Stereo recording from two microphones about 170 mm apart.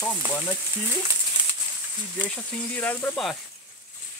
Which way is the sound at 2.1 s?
10° left (ahead or behind).